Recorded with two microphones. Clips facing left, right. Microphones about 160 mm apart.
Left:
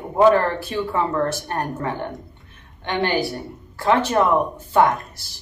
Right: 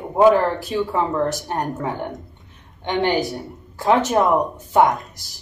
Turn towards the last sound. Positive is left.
turn(degrees=-15)  # may be behind; listen again after turning